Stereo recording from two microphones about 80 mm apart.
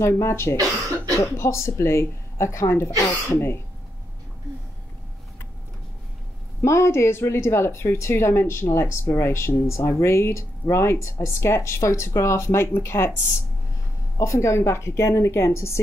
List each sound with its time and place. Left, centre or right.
0.0 s a woman's voice: left
6.6 s a woman's voice: left
14.1 s a woman's voice: left